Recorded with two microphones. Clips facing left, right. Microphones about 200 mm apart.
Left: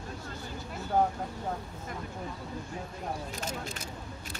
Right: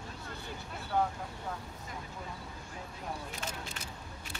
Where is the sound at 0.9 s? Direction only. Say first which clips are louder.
Left 4 dB; 40° left (ahead or behind).